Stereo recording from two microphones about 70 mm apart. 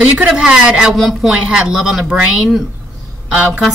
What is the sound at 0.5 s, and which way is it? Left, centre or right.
A woman's voice, centre.